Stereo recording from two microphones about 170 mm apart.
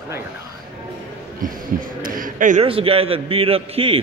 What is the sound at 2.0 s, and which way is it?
Speech, 55° right (ahead or behind).